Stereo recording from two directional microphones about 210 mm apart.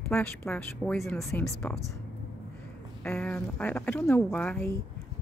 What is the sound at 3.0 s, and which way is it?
A woman's voice, 5° left (ahead or behind).